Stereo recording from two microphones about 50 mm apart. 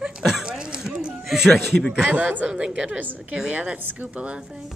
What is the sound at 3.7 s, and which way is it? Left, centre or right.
Speech, right.